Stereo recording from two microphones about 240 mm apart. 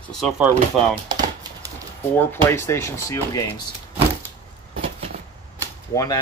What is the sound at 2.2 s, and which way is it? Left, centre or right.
Speech, centre.